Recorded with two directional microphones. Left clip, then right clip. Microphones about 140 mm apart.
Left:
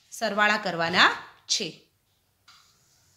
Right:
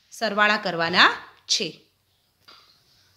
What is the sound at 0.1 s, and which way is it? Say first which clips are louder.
A woman's voice: right 3 dB; 15° right (ahead or behind).